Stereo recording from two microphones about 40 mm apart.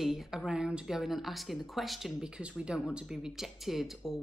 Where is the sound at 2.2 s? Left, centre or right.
Right.